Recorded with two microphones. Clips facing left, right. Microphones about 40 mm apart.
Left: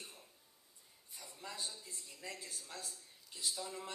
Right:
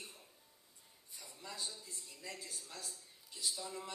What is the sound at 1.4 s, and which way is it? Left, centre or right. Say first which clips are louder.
Speech: even; left.